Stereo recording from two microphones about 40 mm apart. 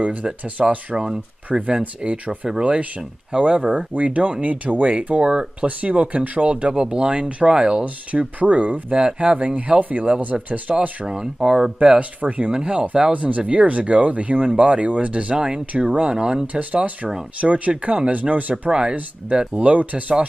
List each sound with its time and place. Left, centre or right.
0.2 s speech: centre; by 7.5 s right
7.5 s speech: centre
7.8 s speech: right
9.4 s speech: right
11.1 s speech: centre
12.0 s speech: right
12.5 s speech: right
13.1 s speech: right
15.3 s speech: centre
15.6 s speech: right
16.5 s speech: right
18.7 s speech: right
19.5 s speech: right